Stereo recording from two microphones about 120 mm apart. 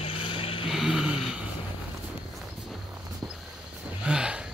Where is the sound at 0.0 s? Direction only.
50° left (ahead or behind).